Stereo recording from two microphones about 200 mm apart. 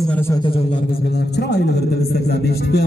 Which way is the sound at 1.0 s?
55° left (ahead or behind).